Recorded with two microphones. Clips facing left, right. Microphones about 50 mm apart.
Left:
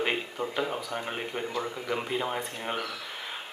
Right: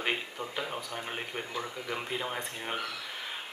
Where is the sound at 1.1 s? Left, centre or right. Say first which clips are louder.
Left 3 dB; centre.